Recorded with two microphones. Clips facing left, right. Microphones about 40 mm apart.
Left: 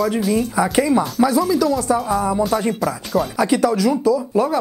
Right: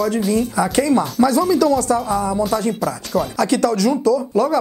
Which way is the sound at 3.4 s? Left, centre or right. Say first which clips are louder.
Even; centre.